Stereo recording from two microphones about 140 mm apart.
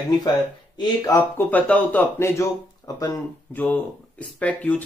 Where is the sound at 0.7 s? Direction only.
30° left (ahead or behind).